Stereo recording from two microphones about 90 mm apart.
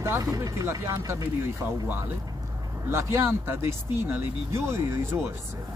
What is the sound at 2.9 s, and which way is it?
Speech, 30° right (ahead or behind).